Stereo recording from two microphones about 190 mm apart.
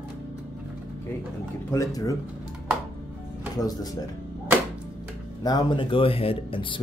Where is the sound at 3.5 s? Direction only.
20° left (ahead or behind).